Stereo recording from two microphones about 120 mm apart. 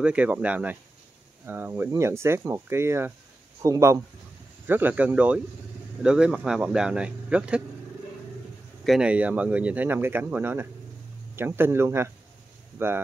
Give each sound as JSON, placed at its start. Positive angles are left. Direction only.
{"t": 0.0, "sound": "speech", "side_deg": -10}
{"t": 8.8, "sound": "speech", "side_deg": -5}